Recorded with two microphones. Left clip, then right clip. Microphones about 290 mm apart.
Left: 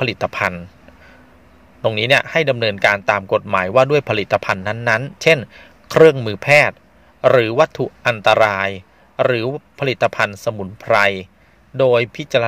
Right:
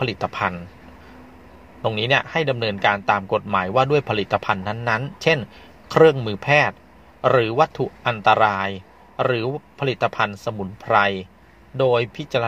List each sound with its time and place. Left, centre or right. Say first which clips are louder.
0.0 s a man's voice: left 4 dB; left
1.8 s a man's voice: left 5 dB; left